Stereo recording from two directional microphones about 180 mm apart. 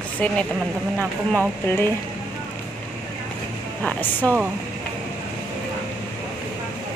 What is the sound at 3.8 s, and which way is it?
Speech, 10° left (ahead or behind).